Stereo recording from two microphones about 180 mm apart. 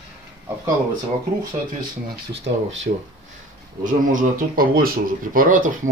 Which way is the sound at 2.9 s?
50° right (ahead or behind).